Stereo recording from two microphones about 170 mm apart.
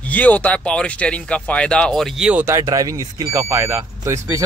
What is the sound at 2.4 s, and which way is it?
Speech, 20° right (ahead or behind).